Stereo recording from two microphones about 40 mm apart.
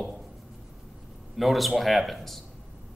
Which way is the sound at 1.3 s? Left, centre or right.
Centre.